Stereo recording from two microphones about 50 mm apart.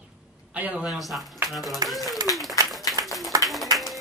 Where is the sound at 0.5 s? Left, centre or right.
Right.